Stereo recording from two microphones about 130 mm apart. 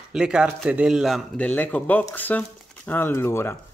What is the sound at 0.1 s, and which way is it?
A man's voice, 5° right (ahead or behind).